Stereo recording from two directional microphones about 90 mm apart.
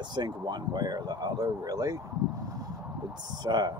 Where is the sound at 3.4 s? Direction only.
50° right (ahead or behind).